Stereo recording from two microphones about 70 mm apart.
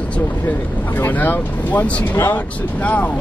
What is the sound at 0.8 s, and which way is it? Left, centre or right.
Speech, left.